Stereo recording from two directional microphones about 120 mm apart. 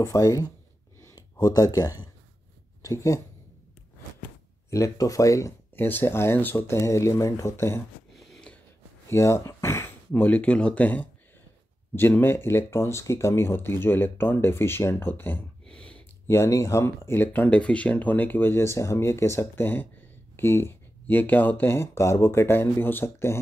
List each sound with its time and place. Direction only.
0.0 s speech: 30° left (ahead or behind)
1.0 s a sound: 30° left (ahead or behind)
2.8 s speech: 25° left (ahead or behind)
4.6 s speech: 25° left (ahead or behind)
8.2 s a sound: 5° left (ahead or behind)
9.1 s speech: 25° left (ahead or behind)
12.1 s speech: 20° left (ahead or behind)
15.6 s a sound: 10° left (ahead or behind)
16.3 s speech: 25° left (ahead or behind)